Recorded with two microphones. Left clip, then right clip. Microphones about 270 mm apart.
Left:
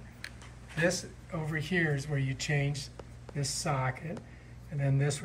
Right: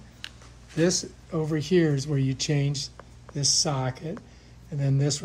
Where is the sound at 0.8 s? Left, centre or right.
Centre.